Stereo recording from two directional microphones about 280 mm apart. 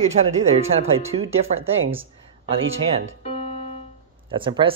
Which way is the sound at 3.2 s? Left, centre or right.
Left.